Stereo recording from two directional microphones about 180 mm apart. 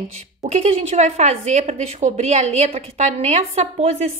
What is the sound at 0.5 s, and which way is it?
A woman's voice, 35° right (ahead or behind).